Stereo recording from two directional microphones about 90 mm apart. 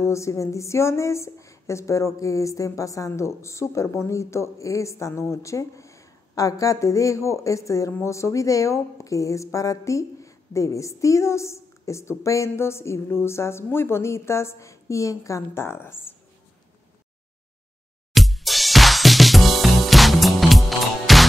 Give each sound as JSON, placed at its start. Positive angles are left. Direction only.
{"t": 0.0, "sound": "speech", "side_deg": 35}
{"t": 18.1, "sound": "music", "side_deg": 0}